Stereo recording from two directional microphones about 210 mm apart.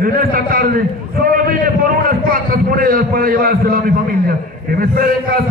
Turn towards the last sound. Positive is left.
turn(degrees=-45)  # may be behind; listen again after turning